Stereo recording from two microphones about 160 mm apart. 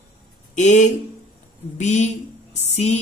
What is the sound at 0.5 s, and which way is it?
A woman's voice, 50° left (ahead or behind).